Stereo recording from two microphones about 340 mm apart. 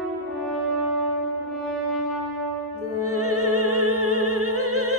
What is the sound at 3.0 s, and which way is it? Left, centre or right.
Opera, right.